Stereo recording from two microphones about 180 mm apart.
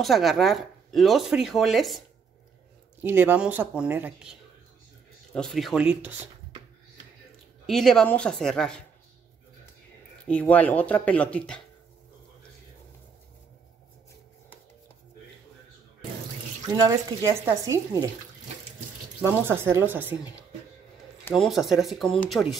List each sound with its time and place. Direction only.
0.0 s speech: centre (ahead or behind)
3.0 s speech: 10° right (ahead or behind)
7.6 s speech: centre (ahead or behind)
10.2 s speech: 10° left (ahead or behind)
16.7 s speech: 20° right (ahead or behind)
19.2 s speech: 10° right (ahead or behind)
21.2 s a sound: 10° left (ahead or behind)
21.5 s speech: centre (ahead or behind)